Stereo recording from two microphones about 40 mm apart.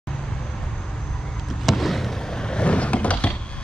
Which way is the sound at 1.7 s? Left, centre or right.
Centre.